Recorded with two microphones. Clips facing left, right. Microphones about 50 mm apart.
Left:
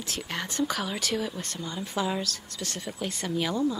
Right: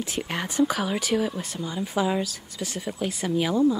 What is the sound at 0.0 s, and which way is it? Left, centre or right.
A woman's voice, centre.